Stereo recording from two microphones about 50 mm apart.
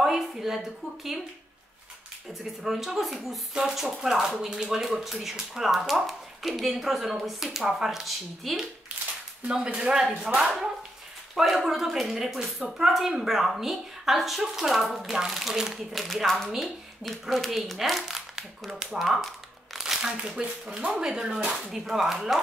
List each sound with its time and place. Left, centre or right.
0.0 s a woman's voice: centre
2.6 s speech: centre
9.5 s speech: centre
15.9 s speech: centre
19.8 s speech: centre